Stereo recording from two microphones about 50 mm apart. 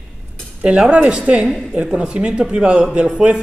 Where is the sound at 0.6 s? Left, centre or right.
Right.